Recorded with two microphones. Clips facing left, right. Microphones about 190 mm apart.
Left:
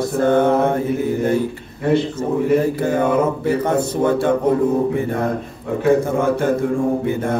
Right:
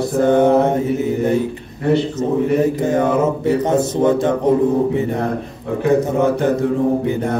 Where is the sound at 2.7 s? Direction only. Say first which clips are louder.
Right 1 dB; 20° right (ahead or behind).